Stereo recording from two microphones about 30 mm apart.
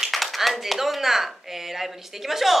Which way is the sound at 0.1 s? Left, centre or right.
Centre.